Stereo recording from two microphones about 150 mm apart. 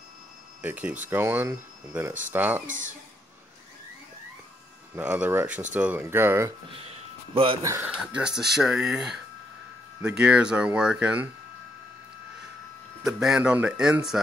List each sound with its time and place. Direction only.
0.6 s speech: 10° right (ahead or behind)
2.6 s speech: 60° right (ahead or behind)
4.9 s speech: 10° right (ahead or behind)
6.7 s a man's voice: 40° right (ahead or behind)
7.6 s speech: 20° right (ahead or behind)
7.9 s speech: 5° right (ahead or behind)
13.0 s speech: 5° right (ahead or behind)